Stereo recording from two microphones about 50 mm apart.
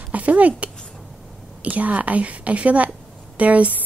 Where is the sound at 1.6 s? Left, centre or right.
Right.